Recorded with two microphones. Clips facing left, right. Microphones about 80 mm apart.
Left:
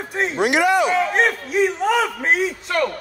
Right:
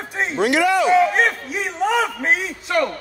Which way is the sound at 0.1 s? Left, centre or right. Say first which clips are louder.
Left 1 dB; centre.